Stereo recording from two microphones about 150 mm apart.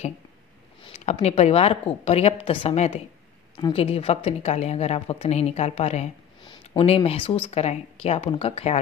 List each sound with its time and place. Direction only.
0.8 s a woman's voice: 45° left (ahead or behind)
6.4 s speech: 30° left (ahead or behind)